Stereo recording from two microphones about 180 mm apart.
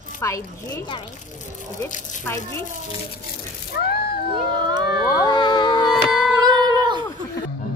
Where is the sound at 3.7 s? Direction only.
60° left (ahead or behind).